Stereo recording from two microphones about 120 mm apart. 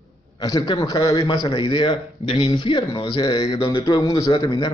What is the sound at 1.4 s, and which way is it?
Speech, 45° left (ahead or behind).